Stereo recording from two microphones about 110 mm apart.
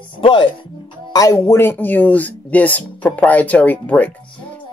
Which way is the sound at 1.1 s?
30° left (ahead or behind).